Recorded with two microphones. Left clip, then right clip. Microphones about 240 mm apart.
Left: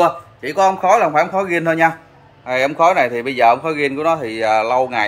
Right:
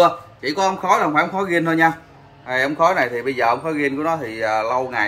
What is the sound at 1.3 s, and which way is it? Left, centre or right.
A man's voice, left.